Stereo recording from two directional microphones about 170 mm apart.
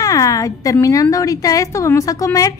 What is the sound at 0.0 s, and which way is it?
A woman's voice, 20° left (ahead or behind).